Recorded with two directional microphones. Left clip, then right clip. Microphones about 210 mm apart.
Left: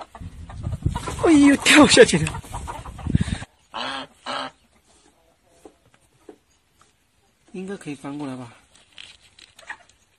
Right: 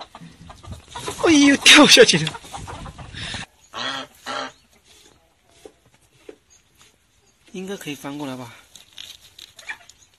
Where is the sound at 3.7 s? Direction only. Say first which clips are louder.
Right 1 dB; 45° left (ahead or behind).